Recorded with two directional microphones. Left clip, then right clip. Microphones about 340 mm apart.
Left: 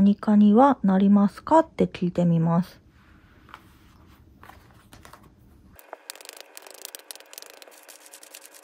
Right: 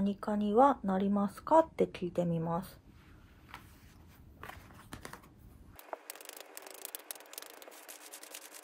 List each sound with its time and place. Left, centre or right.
0.0 s speech: left
4.4 s walk: centre
5.9 s a sound: centre